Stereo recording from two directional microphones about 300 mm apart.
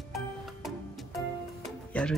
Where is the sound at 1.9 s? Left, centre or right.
Centre.